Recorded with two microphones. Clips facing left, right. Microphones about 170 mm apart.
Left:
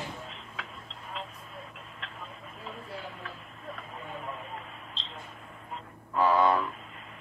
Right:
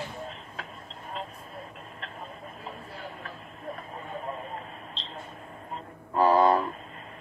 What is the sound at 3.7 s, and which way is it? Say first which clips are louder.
Vehicle: right 3 dB; 40° right (ahead or behind).